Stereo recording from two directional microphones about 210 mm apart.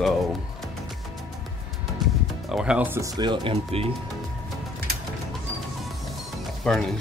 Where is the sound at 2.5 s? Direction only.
5° right (ahead or behind); by 3.8 s 25° right (ahead or behind).